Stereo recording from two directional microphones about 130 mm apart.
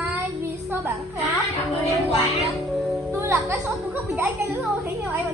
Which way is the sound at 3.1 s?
20° right (ahead or behind).